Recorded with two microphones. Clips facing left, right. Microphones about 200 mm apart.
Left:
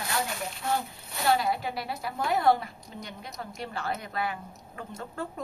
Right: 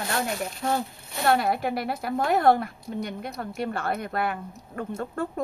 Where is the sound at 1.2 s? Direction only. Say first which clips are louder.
Right 3 dB; 55° right (ahead or behind).